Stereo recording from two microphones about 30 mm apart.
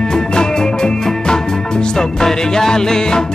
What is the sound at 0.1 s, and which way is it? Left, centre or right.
Music, left.